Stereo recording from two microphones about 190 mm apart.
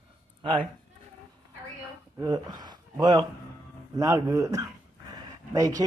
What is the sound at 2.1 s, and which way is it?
A man's voice, 20° right (ahead or behind).